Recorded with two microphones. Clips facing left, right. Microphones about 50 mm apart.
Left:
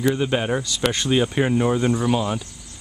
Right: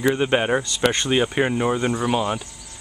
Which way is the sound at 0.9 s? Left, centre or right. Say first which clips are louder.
Even; centre.